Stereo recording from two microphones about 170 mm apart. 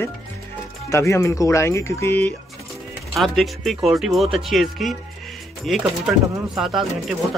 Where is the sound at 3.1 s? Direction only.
Centre (ahead or behind).